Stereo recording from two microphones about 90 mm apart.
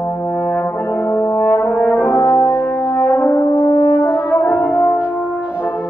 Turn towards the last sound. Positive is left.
turn(degrees=-15)  # may be behind; listen again after turning